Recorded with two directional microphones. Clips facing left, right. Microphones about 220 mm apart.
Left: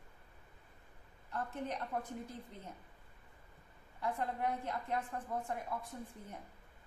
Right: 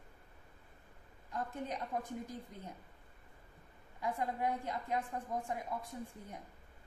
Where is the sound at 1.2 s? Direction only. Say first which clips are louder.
Even; 10° right (ahead or behind).